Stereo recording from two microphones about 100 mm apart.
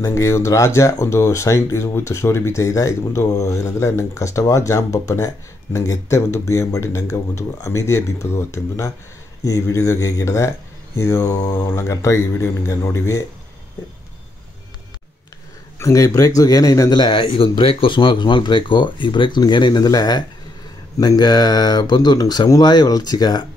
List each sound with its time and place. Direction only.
0.0 s speech: 30° left (ahead or behind)
15.8 s speech: 30° left (ahead or behind)
17.0 s speech: 50° left (ahead or behind)